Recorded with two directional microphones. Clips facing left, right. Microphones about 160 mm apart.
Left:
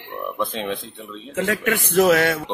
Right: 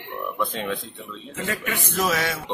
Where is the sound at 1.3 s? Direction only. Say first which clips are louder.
Left 7 dB; 70° left (ahead or behind).